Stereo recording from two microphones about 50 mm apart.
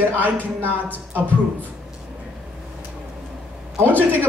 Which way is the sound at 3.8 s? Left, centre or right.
Left.